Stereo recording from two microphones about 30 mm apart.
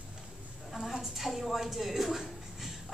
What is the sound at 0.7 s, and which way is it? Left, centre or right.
A woman's voice, centre.